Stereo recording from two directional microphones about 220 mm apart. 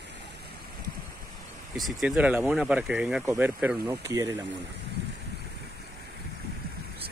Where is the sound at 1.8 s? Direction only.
Centre (ahead or behind).